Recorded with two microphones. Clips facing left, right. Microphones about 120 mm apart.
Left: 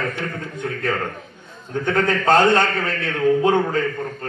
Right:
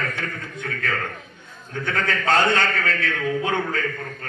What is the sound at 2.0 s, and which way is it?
A man's voice, 30° left (ahead or behind).